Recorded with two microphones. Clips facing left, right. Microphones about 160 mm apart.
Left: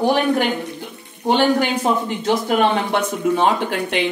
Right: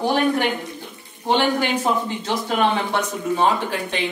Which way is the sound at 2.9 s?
65° left (ahead or behind).